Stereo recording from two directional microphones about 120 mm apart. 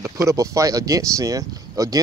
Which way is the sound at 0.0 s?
25° right (ahead or behind).